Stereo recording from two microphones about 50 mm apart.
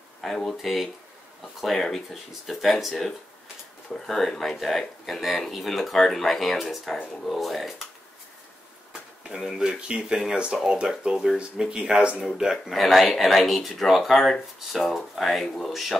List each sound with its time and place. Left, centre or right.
0.2 s speech: centre
9.3 s speech: centre
12.3 s speech: centre